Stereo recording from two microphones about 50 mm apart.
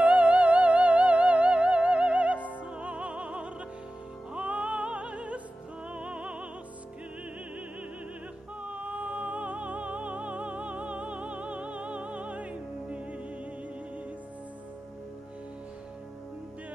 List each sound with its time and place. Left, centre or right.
0.0 s music: right
8.6 s music: right